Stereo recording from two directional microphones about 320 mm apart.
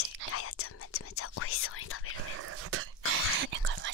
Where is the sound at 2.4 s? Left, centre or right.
Right.